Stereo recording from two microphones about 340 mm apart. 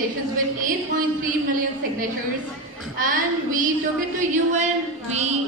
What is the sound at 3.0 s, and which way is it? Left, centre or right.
A woman's voice, right.